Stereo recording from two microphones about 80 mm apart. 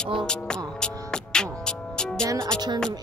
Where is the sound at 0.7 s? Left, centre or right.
Centre.